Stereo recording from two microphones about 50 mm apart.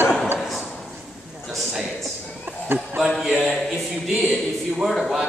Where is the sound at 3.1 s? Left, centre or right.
Centre.